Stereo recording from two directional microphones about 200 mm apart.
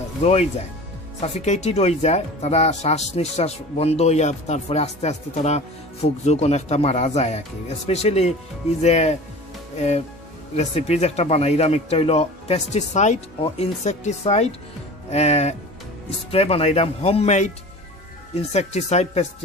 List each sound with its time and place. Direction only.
0.2 s speech: 30° left (ahead or behind)
18.5 s speech: 35° left (ahead or behind)